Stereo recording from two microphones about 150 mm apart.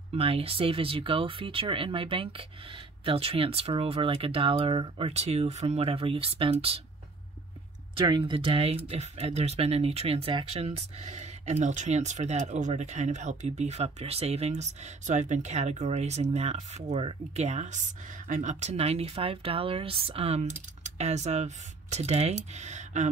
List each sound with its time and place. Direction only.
0.1 s speech: 40° right (ahead or behind)
7.9 s speech: 35° right (ahead or behind); by 23.0 s 50° right (ahead or behind)